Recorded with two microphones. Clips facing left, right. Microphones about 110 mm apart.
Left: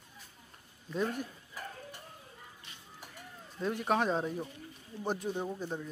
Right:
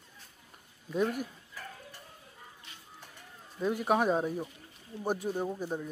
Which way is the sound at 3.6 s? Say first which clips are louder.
Right 3 dB; 5° right (ahead or behind).